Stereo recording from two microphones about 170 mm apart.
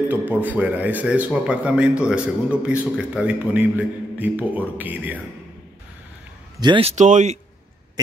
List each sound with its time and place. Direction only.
0.1 s speech: 10° right (ahead or behind)
6.6 s speech: 25° right (ahead or behind)
7.0 s speech: 45° right (ahead or behind)